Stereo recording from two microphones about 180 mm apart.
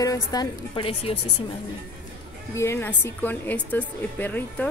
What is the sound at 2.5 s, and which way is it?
A woman's voice, 15° left (ahead or behind).